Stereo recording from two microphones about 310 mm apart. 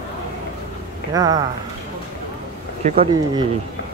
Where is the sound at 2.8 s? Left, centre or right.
Centre.